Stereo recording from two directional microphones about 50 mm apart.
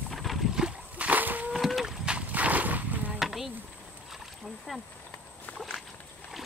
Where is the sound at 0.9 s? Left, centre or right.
Right.